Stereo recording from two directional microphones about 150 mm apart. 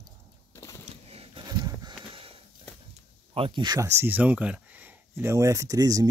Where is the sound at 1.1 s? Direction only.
40° right (ahead or behind).